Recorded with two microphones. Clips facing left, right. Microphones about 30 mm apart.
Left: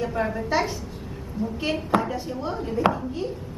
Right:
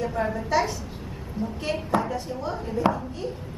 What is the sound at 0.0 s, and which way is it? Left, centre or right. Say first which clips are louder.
Speech: left 1 dB; centre.